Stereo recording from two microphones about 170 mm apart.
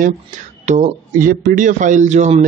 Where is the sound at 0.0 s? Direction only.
45° right (ahead or behind).